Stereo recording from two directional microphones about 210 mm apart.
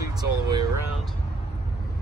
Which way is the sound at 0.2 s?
15° right (ahead or behind).